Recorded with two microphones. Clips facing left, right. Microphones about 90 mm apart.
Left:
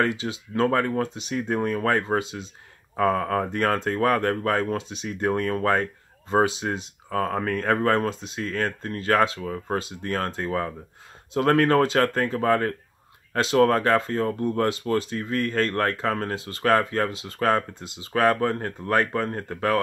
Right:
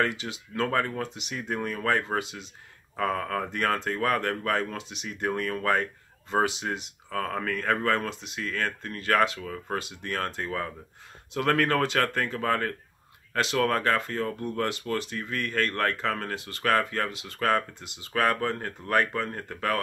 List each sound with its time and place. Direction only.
0.0 s speech: 30° left (ahead or behind)
2.0 s speech: 30° left (ahead or behind)